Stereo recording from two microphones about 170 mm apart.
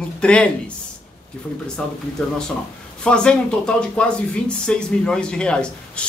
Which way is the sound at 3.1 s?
5° left (ahead or behind).